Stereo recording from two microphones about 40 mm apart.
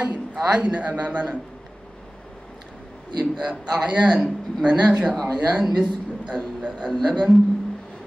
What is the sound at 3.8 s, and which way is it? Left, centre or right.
Speech, right.